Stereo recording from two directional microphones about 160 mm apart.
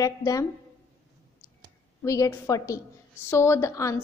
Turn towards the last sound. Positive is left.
turn(degrees=20)  # may be behind; listen again after turning